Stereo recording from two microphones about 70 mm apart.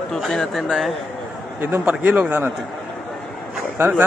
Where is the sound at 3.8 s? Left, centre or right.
Right.